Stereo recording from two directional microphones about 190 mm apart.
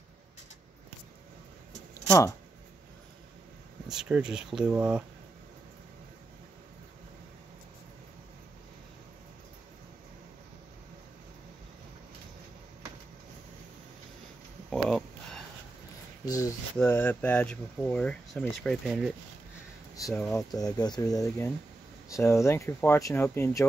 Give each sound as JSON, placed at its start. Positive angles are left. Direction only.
{"t": 2.0, "sound": "speech", "side_deg": 15}
{"t": 3.9, "sound": "speech", "side_deg": -5}
{"t": 14.7, "sound": "a sound", "side_deg": 5}
{"t": 16.7, "sound": "speech", "side_deg": 10}
{"t": 20.0, "sound": "speech", "side_deg": 15}